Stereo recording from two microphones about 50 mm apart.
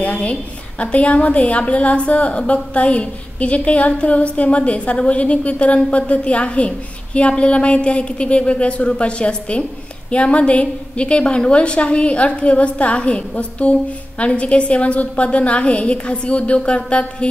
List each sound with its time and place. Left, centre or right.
0.0 s a woman's voice: left